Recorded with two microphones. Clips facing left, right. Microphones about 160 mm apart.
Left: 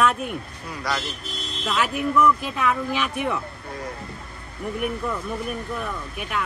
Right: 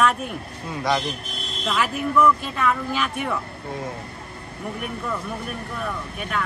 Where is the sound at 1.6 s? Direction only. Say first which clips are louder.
Even; centre (ahead or behind).